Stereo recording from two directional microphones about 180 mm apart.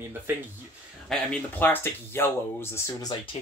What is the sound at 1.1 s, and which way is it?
Speech, 10° left (ahead or behind).